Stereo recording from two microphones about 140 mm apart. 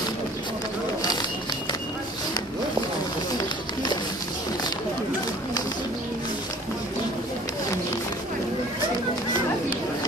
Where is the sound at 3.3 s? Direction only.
30° left (ahead or behind).